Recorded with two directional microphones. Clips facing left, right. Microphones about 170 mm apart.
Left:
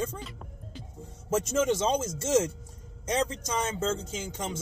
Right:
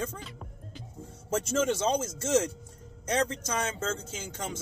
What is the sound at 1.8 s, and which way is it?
Speech, 25° left (ahead or behind).